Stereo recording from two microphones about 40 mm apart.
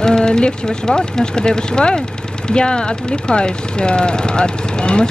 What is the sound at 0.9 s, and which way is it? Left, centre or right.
Speech, centre.